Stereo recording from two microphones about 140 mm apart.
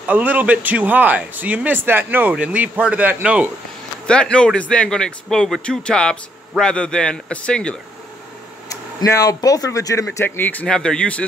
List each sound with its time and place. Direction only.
0.0 s speech: 10° right (ahead or behind)
4.1 s speech: 5° left (ahead or behind)
8.6 s speech: 25° left (ahead or behind); by 11.2 s 10° left (ahead or behind)